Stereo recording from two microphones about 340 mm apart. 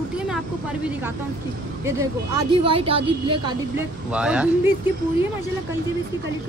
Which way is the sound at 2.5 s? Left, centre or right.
Centre.